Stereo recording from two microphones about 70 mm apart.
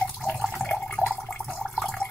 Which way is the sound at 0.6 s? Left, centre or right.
Centre.